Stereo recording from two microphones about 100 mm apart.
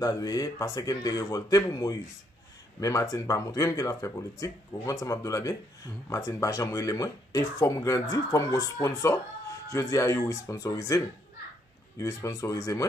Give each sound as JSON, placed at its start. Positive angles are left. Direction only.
{"t": 0.0, "sound": "speech", "side_deg": 40}
{"t": 12.0, "sound": "speech", "side_deg": 35}